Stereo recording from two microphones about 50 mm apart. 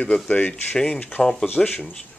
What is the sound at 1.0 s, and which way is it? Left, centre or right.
Speech, left.